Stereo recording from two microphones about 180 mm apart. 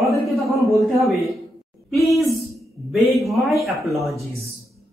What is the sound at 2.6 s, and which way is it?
Music, centre (ahead or behind).